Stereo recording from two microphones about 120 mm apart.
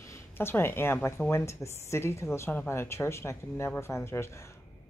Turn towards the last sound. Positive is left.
turn(degrees=20)  # may be behind; listen again after turning